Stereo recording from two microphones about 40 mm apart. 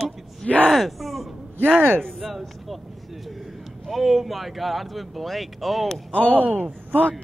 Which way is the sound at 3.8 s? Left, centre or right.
Centre.